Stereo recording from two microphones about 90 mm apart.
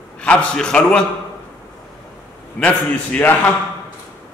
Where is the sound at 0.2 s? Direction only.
10° left (ahead or behind).